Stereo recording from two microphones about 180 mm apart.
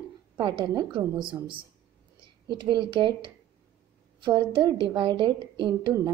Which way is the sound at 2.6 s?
25° right (ahead or behind).